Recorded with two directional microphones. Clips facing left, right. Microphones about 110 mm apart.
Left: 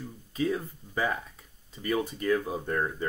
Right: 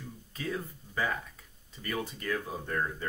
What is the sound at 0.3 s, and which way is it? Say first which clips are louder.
Speech: left 7 dB; 20° left (ahead or behind).